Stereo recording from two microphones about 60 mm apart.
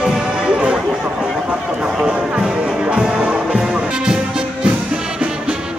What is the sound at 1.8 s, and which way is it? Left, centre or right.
Music, centre.